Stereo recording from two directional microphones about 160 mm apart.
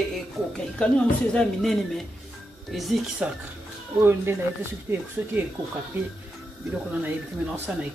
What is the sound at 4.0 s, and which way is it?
Speech, 15° right (ahead or behind).